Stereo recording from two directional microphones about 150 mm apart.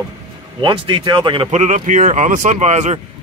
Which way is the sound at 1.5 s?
50° right (ahead or behind).